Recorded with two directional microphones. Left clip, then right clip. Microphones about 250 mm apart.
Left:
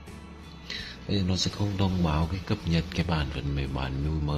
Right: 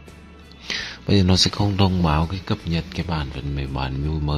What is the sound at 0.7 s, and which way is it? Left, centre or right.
Speech, right.